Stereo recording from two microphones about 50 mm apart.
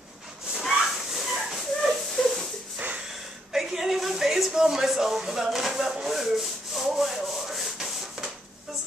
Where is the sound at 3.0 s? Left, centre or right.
Centre.